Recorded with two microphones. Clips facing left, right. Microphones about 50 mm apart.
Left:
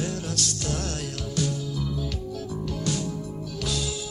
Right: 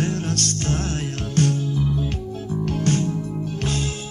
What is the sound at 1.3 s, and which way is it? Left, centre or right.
Music, right.